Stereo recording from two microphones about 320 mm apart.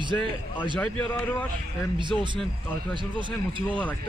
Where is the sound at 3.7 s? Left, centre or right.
Centre.